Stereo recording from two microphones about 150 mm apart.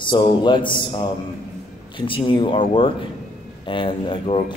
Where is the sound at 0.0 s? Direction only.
30° left (ahead or behind).